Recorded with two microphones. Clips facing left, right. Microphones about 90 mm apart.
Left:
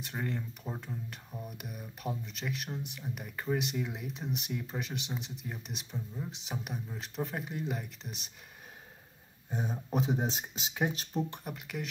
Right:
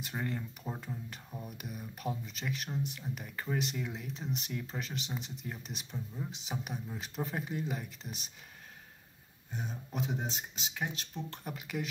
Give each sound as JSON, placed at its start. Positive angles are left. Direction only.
{"t": 0.0, "sound": "speech", "side_deg": 0}
{"t": 9.5, "sound": "speech", "side_deg": 20}
{"t": 11.4, "sound": "speech", "side_deg": 0}